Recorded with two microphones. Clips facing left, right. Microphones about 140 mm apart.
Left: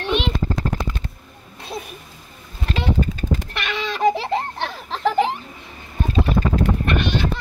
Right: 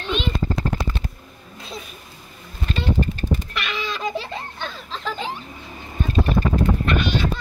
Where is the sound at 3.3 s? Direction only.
70° left (ahead or behind).